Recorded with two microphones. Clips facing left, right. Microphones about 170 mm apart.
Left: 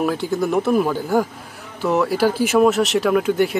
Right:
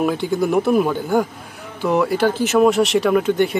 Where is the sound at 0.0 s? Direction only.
Centre (ahead or behind).